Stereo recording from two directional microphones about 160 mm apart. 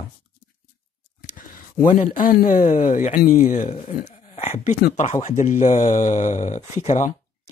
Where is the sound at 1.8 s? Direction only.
55° left (ahead or behind).